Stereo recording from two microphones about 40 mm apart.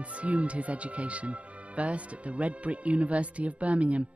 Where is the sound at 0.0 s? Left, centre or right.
Right.